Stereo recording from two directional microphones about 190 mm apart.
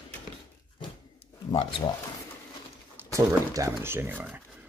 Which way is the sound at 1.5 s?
25° left (ahead or behind).